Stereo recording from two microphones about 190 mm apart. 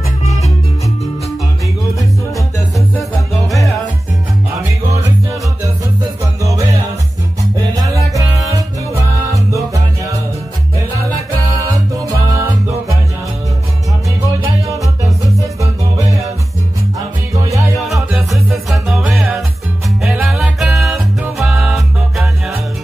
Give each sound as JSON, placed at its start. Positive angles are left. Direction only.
{"t": 8.1, "sound": "music", "side_deg": -15}
{"t": 12.3, "sound": "music", "side_deg": -15}
{"t": 15.3, "sound": "music", "side_deg": -15}
{"t": 17.3, "sound": "music", "side_deg": -15}
{"t": 17.8, "sound": "music", "side_deg": 0}